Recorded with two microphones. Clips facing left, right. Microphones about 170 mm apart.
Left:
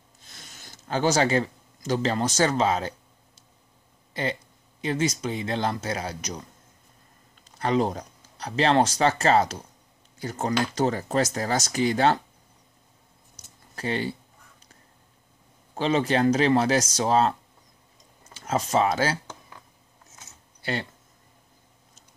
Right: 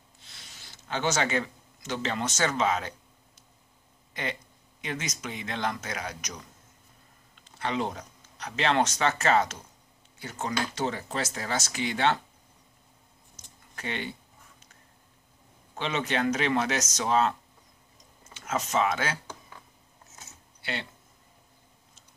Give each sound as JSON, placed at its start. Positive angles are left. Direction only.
{"t": 0.2, "sound": "speech", "side_deg": 45}
{"t": 4.1, "sound": "speech", "side_deg": 30}
{"t": 7.5, "sound": "speech", "side_deg": 40}
{"t": 13.7, "sound": "speech", "side_deg": 35}
{"t": 15.7, "sound": "speech", "side_deg": 35}
{"t": 20.6, "sound": "speech", "side_deg": 40}